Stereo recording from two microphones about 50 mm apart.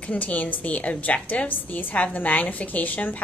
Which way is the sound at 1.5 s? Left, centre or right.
Left.